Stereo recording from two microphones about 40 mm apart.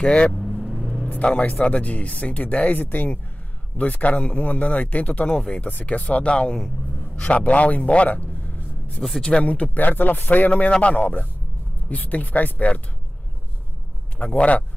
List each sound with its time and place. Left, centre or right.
0.0 s speech: left
0.3 s vehicle: centre
1.1 s speech: left
5.3 s speech: left
5.6 s speech: left
5.9 s speech: left
9.0 s speech: centre
9.4 s speech: left
9.8 s speech: left
10.8 s speech: left
14.1 s speech: left